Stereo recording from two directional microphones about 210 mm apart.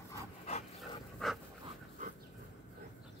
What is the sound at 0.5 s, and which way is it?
Dog, 30° left (ahead or behind).